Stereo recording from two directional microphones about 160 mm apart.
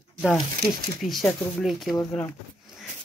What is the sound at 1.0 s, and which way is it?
Speech, centre (ahead or behind).